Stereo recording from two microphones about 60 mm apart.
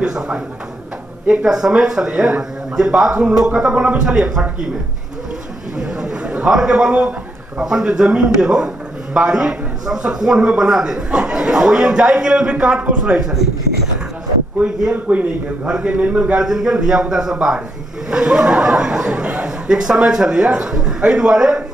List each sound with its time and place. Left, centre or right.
0.0 s a man's voice: centre
1.4 s a man's voice: centre
5.8 s chatter: centre
6.5 s a man's voice: centre
15.0 s a man's voice: right
16.4 s a man's voice: centre